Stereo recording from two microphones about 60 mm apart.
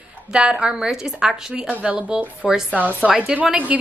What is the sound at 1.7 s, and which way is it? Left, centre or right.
Speech, centre.